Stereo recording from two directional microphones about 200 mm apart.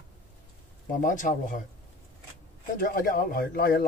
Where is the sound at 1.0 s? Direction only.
40° left (ahead or behind).